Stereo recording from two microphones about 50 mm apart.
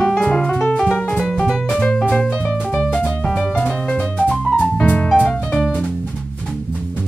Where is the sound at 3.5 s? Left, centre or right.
Left.